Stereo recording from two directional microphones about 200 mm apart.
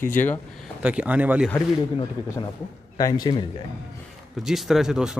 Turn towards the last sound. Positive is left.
turn(degrees=-5)  # may be behind; listen again after turning